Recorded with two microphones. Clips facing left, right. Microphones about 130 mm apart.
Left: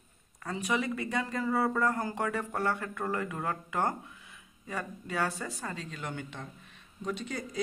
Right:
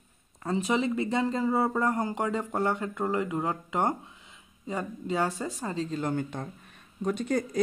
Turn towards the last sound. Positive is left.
turn(degrees=-45)  # may be behind; listen again after turning